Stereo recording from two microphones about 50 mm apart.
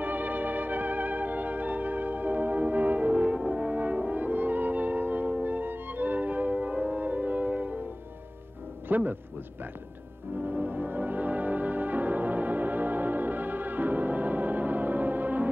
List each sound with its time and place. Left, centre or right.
0.0 s music: right
3.4 s french horn: right
8.8 s a man's voice: right
10.4 s music: right